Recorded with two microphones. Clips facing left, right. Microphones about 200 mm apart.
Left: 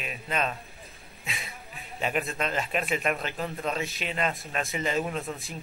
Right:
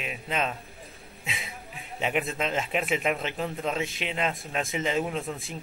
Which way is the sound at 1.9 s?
15° right (ahead or behind).